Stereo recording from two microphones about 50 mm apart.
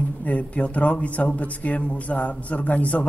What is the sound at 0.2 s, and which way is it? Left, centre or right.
A man's voice, left.